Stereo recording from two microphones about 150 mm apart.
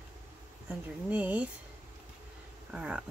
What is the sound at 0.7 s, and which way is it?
Speech, 10° right (ahead or behind).